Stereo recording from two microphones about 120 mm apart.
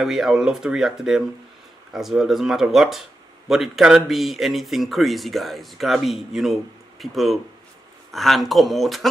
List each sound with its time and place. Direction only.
0.0 s speech: centre (ahead or behind)